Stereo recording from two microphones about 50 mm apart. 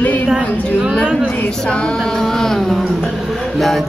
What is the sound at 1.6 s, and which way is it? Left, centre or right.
Music, centre.